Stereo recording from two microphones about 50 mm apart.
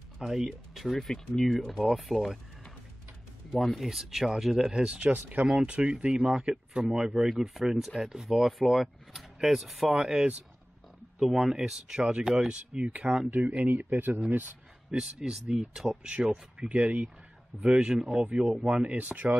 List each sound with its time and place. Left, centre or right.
0.2 s speech: centre
0.7 s speech: centre
3.6 s speech: centre
4.7 s speech: centre
5.1 s speech: right
5.5 s speech: centre
7.2 s speech: centre
9.8 s speech: centre; by 14.2 s right
14.9 s speech: centre
17.6 s speech: centre